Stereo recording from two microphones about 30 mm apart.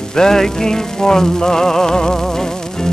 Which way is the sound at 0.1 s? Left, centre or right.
Centre.